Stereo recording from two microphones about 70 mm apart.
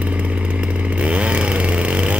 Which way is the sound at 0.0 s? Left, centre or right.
Centre.